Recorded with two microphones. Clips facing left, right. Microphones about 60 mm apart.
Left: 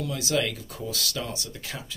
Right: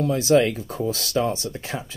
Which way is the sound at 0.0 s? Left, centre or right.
Right.